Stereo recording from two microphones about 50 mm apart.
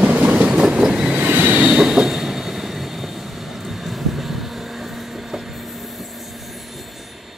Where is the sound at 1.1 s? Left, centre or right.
Right.